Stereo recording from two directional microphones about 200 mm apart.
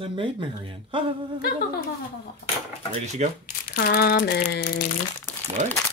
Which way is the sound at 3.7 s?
50° left (ahead or behind).